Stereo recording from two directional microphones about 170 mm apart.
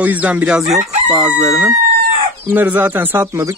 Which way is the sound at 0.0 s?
10° right (ahead or behind).